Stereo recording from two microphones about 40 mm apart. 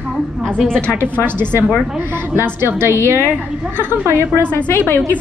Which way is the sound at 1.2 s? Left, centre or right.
Right.